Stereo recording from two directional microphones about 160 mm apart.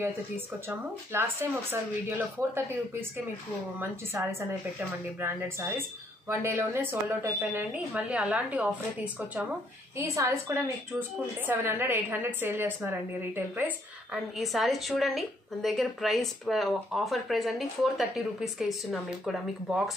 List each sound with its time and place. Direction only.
0.7 s speech: 15° right (ahead or behind)
4.1 s a woman's voice: 15° right (ahead or behind)